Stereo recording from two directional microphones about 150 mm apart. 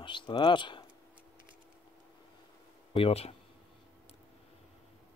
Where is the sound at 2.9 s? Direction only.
40° left (ahead or behind).